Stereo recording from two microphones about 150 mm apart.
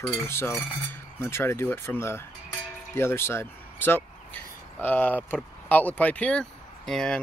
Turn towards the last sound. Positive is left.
turn(degrees=5)  # may be behind; listen again after turning